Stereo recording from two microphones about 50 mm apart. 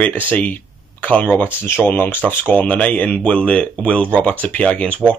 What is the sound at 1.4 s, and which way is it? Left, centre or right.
Speech, left.